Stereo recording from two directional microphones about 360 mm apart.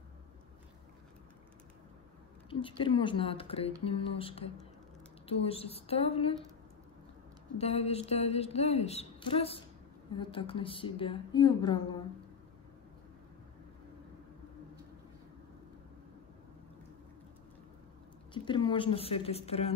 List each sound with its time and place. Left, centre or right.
2.6 s a woman's voice: centre
7.5 s a woman's voice: centre
18.3 s a woman's voice: centre